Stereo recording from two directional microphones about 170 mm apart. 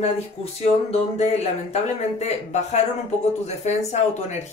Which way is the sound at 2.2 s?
45° left (ahead or behind).